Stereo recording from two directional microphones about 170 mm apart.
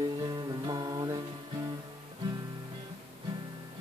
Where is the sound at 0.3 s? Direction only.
25° right (ahead or behind).